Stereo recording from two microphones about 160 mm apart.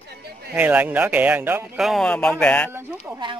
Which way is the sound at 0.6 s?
10° right (ahead or behind).